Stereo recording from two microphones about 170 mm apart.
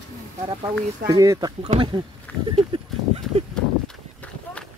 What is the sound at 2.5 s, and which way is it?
Horse, 35° right (ahead or behind).